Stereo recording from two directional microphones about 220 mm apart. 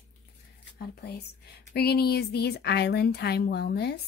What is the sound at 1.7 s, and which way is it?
Speech, 45° left (ahead or behind).